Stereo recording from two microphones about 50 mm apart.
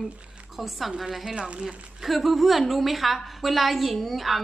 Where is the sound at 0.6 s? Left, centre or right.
Centre.